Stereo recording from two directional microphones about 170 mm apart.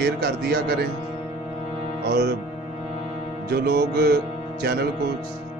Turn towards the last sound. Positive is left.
turn(degrees=-70)  # may be behind; listen again after turning